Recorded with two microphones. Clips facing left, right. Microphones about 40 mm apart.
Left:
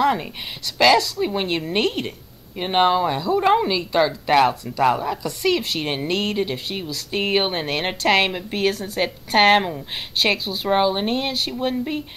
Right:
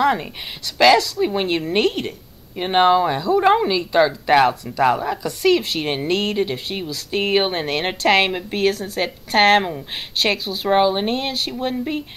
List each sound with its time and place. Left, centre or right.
0.0 s a woman's voice: centre